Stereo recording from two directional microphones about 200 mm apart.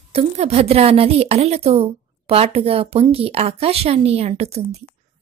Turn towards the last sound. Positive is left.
turn(degrees=-30)  # may be behind; listen again after turning